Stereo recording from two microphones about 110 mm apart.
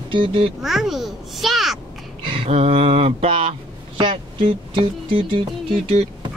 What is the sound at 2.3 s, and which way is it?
Speech, 60° right (ahead or behind).